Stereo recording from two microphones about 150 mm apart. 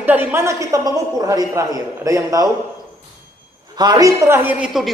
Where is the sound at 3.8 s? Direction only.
25° right (ahead or behind).